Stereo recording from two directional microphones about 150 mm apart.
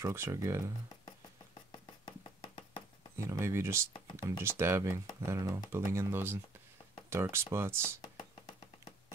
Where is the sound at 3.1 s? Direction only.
20° right (ahead or behind).